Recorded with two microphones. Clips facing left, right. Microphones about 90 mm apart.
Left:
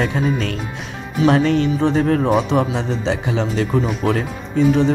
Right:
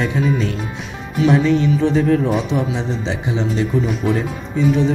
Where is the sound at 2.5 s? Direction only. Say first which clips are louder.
Left 2 dB; 55° left (ahead or behind).